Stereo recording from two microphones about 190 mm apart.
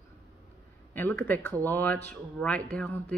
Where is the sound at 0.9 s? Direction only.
10° left (ahead or behind).